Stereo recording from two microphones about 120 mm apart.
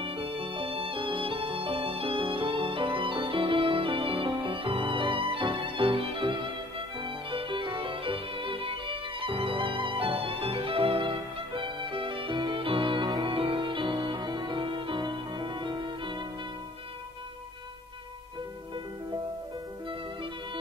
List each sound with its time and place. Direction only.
0.0 s music: 50° right (ahead or behind)